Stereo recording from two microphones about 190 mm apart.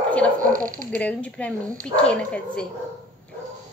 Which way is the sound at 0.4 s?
45° right (ahead or behind).